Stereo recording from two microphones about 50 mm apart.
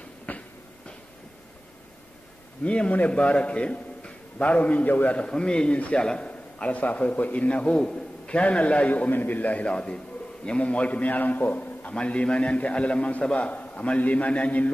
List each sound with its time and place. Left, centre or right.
0.3 s a sound: left
2.6 s a man's voice: left
9.1 s a man's voice: left
11.9 s a man's voice: left